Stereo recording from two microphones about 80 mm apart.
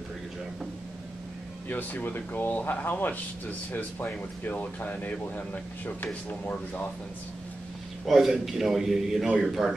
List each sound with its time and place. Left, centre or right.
1.7 s speech: left
8.0 s a man's voice: centre